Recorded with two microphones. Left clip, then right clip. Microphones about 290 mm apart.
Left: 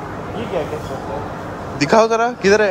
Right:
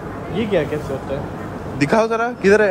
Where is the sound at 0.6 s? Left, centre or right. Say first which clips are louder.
Right 2 dB; right.